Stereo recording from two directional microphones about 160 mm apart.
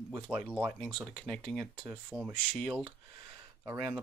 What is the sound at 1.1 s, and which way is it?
Speech, 5° left (ahead or behind).